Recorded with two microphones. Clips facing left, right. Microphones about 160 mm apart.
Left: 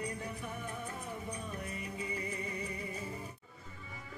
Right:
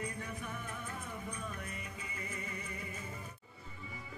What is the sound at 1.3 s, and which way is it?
Music, 35° left (ahead or behind).